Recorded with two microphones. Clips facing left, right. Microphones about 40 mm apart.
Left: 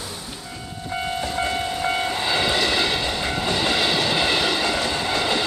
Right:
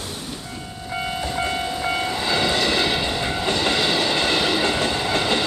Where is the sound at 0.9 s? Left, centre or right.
Centre.